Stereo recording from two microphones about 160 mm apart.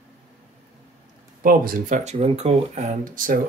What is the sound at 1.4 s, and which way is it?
Speech, 60° right (ahead or behind).